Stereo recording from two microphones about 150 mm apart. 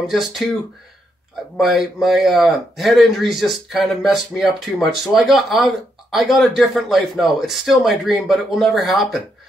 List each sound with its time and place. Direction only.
0.1 s speech: centre (ahead or behind)
1.6 s speech: centre (ahead or behind)